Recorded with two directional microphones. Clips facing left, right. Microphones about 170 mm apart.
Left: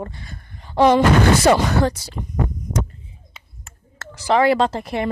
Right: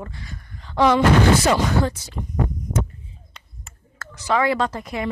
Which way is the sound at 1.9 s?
35° left (ahead or behind).